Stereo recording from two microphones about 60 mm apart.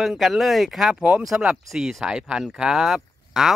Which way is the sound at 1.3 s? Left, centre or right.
Right.